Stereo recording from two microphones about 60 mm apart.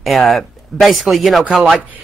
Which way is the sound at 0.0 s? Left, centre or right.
Centre.